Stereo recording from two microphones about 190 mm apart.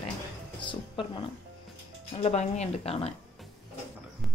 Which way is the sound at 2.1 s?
35° left (ahead or behind).